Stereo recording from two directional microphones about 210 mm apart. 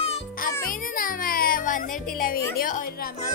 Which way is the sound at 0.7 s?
40° left (ahead or behind).